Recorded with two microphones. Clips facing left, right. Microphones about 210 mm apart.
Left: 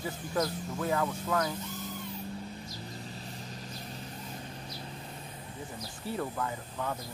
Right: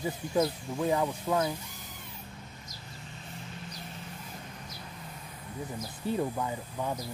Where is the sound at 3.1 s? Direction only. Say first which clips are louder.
Left 2 dB; 35° left (ahead or behind).